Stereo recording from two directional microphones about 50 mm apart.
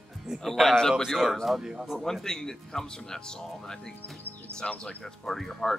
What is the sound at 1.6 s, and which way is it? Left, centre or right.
Speech, centre.